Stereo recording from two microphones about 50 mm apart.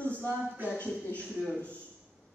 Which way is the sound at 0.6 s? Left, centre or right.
Left.